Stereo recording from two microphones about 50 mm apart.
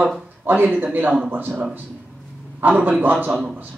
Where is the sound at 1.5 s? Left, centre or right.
Right.